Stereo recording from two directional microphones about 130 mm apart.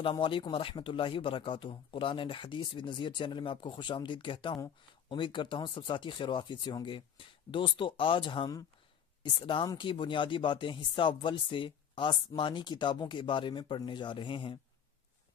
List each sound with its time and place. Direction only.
0.0 s speech: 40° left (ahead or behind)